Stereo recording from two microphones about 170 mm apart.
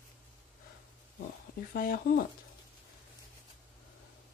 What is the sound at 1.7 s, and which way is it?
Speech, 60° left (ahead or behind).